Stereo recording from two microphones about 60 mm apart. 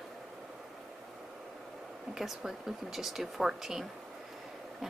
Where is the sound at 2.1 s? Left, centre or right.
Centre.